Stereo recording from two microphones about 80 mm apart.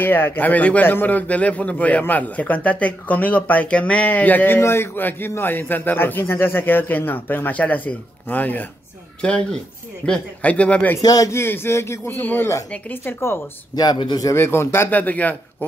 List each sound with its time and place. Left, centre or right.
0.0 s a man's voice: left
11.0 s a man's voice: left
11.3 s a man's voice: left
13.7 s speech: left
14.3 s a man's voice: left